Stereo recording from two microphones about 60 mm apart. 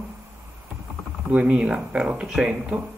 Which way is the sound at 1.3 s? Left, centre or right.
Centre.